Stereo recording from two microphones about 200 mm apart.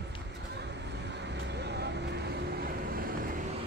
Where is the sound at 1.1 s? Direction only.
60° right (ahead or behind).